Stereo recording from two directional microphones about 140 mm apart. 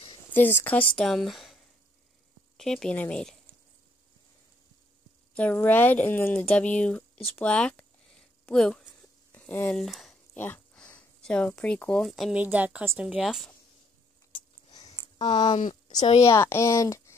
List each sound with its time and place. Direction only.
0.3 s speech: 15° left (ahead or behind)
5.3 s speech: 10° left (ahead or behind)
7.2 s a sound: 5° left (ahead or behind)
9.8 s speech: centre (ahead or behind)
10.3 s speech: 15° left (ahead or behind); by 13.5 s centre (ahead or behind)
14.3 s a sound: 30° left (ahead or behind)
15.3 s speech: 30° left (ahead or behind)